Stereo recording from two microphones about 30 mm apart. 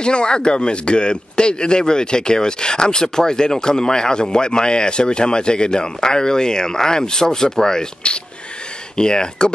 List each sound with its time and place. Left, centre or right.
0.0 s speech: left
8.0 s speech: left